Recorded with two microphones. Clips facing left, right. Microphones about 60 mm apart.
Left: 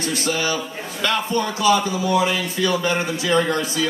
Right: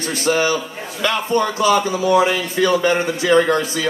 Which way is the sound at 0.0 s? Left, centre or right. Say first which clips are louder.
Right 5 dB; right.